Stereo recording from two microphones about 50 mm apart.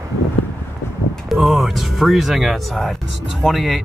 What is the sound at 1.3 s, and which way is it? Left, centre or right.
Speech, centre.